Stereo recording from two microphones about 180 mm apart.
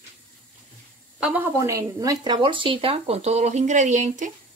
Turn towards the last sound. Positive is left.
turn(degrees=-45)  # may be behind; listen again after turning